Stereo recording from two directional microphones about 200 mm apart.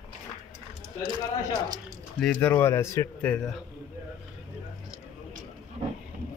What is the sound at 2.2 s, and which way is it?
Speech, 5° left (ahead or behind).